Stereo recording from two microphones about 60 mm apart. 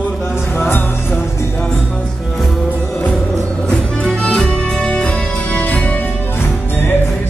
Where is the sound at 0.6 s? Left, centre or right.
Left.